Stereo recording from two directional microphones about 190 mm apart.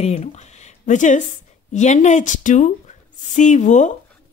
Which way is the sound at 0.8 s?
40° left (ahead or behind).